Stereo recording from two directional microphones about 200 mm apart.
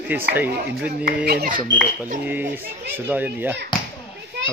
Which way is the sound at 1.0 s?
50° right (ahead or behind).